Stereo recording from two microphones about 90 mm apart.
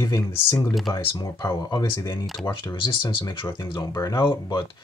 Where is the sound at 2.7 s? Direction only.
65° left (ahead or behind).